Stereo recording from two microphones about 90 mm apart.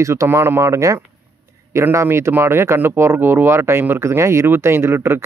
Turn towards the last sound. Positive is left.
turn(degrees=-25)  # may be behind; listen again after turning